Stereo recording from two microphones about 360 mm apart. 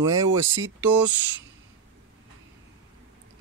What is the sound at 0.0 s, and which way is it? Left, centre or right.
Speech, centre.